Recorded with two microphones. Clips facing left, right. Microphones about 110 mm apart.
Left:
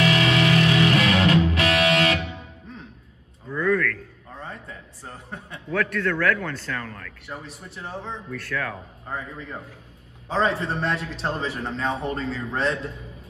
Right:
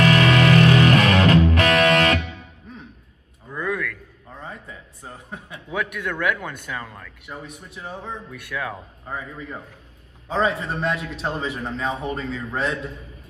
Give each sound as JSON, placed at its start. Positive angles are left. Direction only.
{"t": 0.0, "sound": "music", "side_deg": -50}
{"t": 3.4, "sound": "a sound", "side_deg": -15}
{"t": 4.4, "sound": "a man's voice", "side_deg": 0}
{"t": 7.2, "sound": "a man's voice", "side_deg": 0}